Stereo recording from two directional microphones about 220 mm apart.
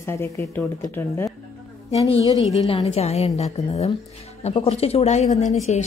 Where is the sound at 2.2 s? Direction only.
15° right (ahead or behind).